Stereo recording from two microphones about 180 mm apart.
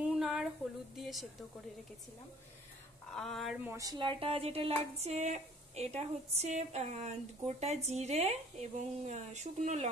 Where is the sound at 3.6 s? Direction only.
15° right (ahead or behind).